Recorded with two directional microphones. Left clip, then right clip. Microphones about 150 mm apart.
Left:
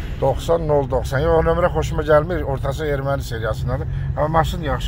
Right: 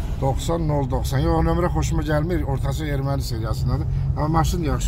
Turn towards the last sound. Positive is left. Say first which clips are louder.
# left 4 dB
turn(degrees=0)  # may be behind; listen again after turning